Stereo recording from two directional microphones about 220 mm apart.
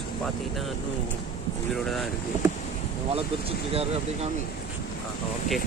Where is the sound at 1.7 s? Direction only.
Centre (ahead or behind).